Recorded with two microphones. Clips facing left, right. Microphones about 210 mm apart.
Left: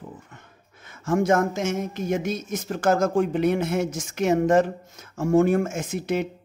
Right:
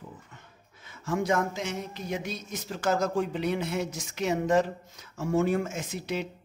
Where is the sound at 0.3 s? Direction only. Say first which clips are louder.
Left 4 dB; 50° left (ahead or behind).